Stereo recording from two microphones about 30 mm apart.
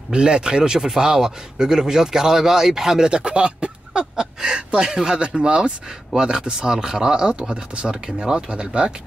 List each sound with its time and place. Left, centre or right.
0.1 s speech: right
0.7 s speech: centre
3.1 s speech: right
4.2 s speech: right